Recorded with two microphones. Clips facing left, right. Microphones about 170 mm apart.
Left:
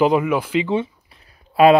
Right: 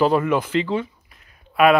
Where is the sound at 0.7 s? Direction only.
25° left (ahead or behind).